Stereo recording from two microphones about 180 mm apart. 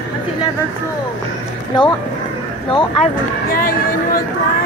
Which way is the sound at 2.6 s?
30° left (ahead or behind).